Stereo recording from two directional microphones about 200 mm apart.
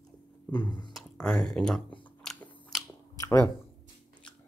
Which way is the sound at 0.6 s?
20° left (ahead or behind).